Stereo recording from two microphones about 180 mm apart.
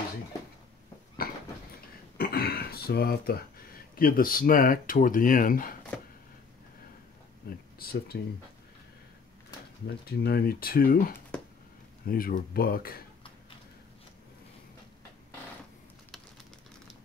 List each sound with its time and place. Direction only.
2.1 s throat clearing: 60° left (ahead or behind)
4.0 s speech: 50° left (ahead or behind)
7.4 s speech: 55° left (ahead or behind)
10.0 s speech: 60° left (ahead or behind)